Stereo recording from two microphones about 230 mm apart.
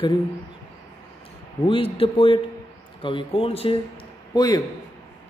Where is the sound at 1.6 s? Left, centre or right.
Left.